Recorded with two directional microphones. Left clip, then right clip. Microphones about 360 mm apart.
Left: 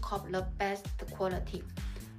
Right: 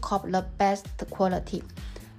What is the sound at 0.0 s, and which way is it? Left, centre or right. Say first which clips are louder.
Speech: right 8 dB; centre.